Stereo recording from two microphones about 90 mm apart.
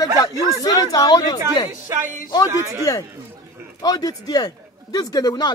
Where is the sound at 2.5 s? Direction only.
35° right (ahead or behind).